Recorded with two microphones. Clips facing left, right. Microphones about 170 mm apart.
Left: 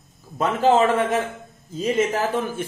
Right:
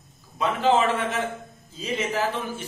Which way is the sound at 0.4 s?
45° left (ahead or behind).